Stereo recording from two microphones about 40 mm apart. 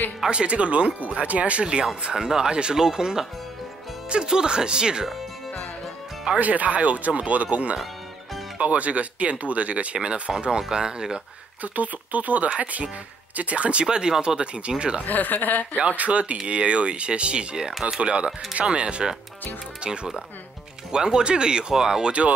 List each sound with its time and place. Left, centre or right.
0.3 s speech: right
2.1 s speech: centre
6.3 s speech: right
8.5 s speech: right
10.7 s speech: centre
11.6 s speech: right
13.8 s speech: centre
15.0 s speech: left
16.0 s speech: right; by 22.1 s centre